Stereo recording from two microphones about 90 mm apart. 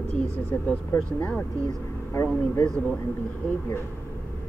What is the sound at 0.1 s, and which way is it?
Speech, 15° left (ahead or behind).